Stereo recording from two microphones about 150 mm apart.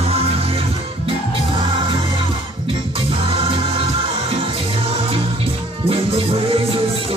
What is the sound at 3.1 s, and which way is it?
Music, 35° right (ahead or behind).